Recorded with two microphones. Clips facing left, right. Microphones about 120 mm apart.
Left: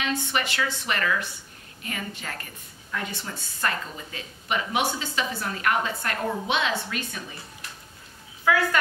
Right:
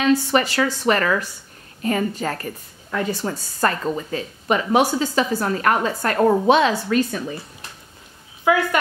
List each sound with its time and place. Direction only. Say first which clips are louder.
0.0 s speech: right 10 dB; 40° right (ahead or behind)
8.5 s speech: right 5 dB; 20° right (ahead or behind)